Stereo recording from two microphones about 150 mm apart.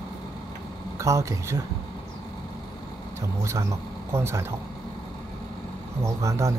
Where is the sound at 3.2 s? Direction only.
20° right (ahead or behind).